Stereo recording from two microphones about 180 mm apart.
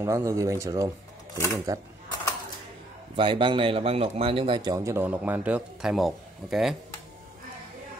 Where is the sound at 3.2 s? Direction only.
30° right (ahead or behind); by 6.7 s centre (ahead or behind).